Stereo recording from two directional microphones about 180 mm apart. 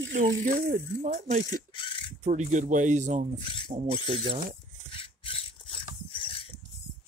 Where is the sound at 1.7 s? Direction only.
30° left (ahead or behind).